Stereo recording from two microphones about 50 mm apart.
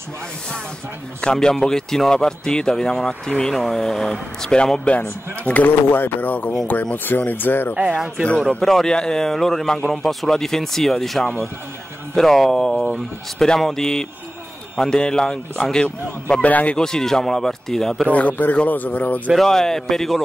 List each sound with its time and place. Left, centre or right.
1.2 s a man's voice: centre
5.4 s speech: left
8.4 s a man's voice: centre
16.4 s speech: left
16.7 s a man's voice: centre
18.1 s speech: left
19.3 s a man's voice: centre